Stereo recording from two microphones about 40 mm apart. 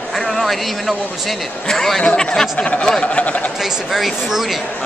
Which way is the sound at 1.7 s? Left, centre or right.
Centre.